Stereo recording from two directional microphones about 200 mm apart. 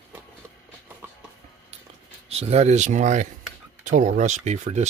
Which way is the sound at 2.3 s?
30° right (ahead or behind).